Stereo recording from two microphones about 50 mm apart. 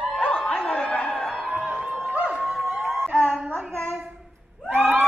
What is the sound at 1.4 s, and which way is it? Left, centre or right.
Music, right.